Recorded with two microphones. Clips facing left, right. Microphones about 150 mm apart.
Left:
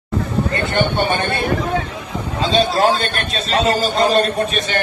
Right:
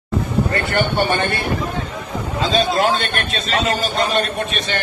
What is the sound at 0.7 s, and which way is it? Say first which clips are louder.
Speech: left 1 dB; 15° left (ahead or behind).